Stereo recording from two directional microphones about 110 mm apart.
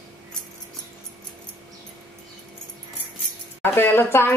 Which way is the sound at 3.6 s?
20° left (ahead or behind).